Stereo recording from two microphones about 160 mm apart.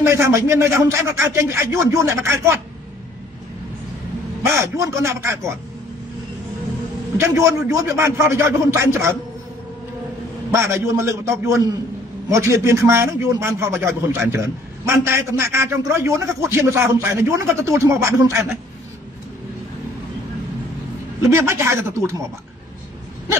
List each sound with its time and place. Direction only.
0.0 s a man's voice: 20° right (ahead or behind)
4.4 s a man's voice: 15° right (ahead or behind)
7.2 s a man's voice: 15° right (ahead or behind)
10.5 s a man's voice: 15° right (ahead or behind)
21.2 s a man's voice: 15° right (ahead or behind)